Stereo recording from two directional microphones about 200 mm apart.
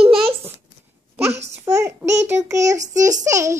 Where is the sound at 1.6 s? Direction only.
15° right (ahead or behind).